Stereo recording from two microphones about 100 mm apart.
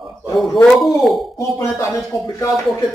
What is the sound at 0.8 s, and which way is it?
Speech, centre (ahead or behind).